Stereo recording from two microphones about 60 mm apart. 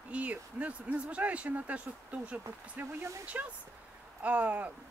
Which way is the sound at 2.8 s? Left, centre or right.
Right.